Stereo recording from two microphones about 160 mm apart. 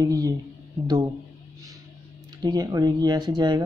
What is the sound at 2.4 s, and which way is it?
Speech, 25° right (ahead or behind).